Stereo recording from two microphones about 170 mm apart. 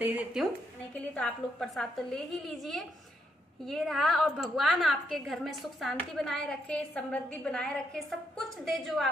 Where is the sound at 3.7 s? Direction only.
Centre (ahead or behind).